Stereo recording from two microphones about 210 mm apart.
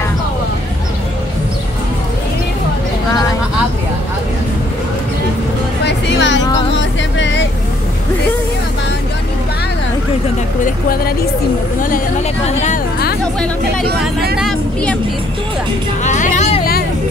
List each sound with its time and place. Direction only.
5.9 s music: 55° left (ahead or behind)
10.6 s vehicle: 45° left (ahead or behind)
12.4 s a sound: 35° left (ahead or behind)
13.8 s vehicle: 50° right (ahead or behind)
14.4 s vehicle: 5° left (ahead or behind)
16.0 s music: 35° left (ahead or behind)